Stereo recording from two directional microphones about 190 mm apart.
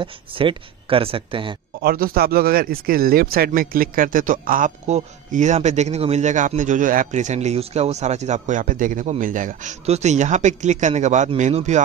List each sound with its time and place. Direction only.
0.0 s speech: 25° right (ahead or behind)
1.8 s a man's voice: 50° right (ahead or behind)